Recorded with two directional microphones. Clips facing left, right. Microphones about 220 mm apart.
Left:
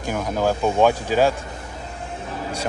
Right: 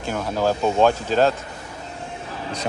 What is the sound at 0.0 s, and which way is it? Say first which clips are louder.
Speech: even; 15° left (ahead or behind).